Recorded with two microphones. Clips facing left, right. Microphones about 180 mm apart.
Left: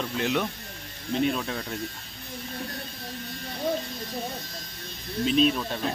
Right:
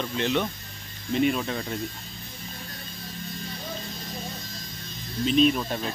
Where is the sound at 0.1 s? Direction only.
Centre (ahead or behind).